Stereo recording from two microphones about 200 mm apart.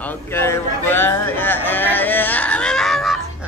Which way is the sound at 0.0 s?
10° left (ahead or behind).